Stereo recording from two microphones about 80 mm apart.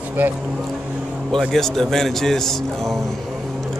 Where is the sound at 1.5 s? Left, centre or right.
Centre.